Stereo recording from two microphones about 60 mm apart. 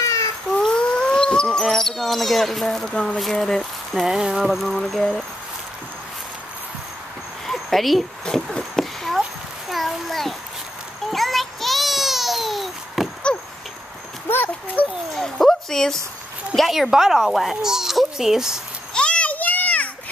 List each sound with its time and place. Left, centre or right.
0.0 s babbling: left
0.6 s wail: centre
1.6 s a child's voice: centre
2.9 s speech: centre
3.2 s a child's voice: centre
4.1 s a child's voice: centre
7.4 s a sound: centre
9.7 s a child's voice: centre
11.1 s a sound: centre
14.3 s horse: left
15.1 s a sound: centre
16.5 s a child's voice: centre
18.9 s children playing: centre